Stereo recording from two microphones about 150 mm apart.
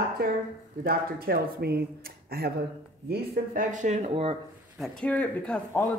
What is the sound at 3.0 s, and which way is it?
Speech, 80° right.